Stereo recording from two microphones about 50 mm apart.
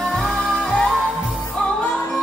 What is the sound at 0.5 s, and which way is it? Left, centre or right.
Music, left.